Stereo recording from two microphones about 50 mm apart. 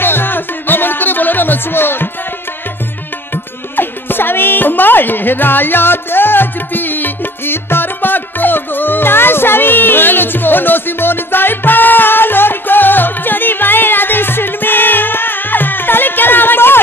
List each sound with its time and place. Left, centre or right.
0.0 s music: left
3.7 s music: left